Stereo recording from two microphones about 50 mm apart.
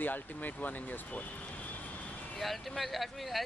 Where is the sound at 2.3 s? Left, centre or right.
Centre.